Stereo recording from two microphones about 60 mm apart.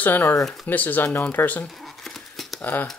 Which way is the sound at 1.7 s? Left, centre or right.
Centre.